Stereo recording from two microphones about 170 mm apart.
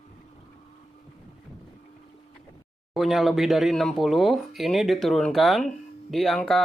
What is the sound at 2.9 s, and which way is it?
Speech, centre (ahead or behind).